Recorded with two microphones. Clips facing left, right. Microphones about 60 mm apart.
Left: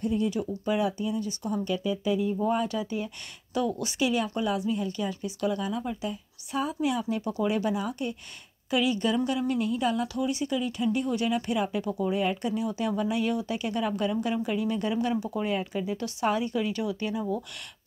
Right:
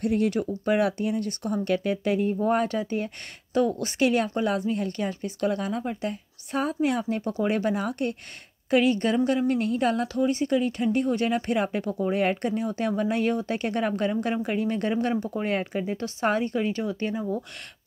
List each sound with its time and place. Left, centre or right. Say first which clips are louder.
0.0 s speech: right 3 dB; right